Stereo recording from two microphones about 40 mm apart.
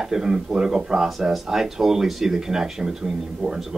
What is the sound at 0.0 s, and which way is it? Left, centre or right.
Speech, centre.